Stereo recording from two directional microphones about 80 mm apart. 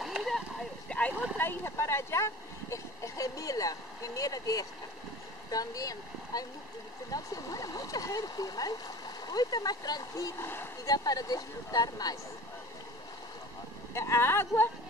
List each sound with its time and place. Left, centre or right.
0.0 s a sound: centre
0.8 s a sound: centre
1.4 s speech: left
10.4 s speech: left
10.9 s speech: left
13.9 s speech: left